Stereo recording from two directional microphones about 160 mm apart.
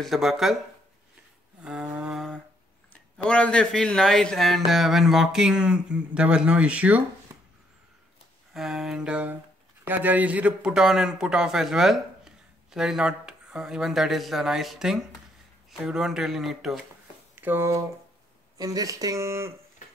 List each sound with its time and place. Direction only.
0.0 s a man's voice: centre (ahead or behind)
1.6 s a sound: 5° right (ahead or behind)
2.9 s a man's voice: 5° left (ahead or behind); by 7.0 s 10° right (ahead or behind)
8.5 s a man's voice: centre (ahead or behind)
17.4 s speech: 15° right (ahead or behind)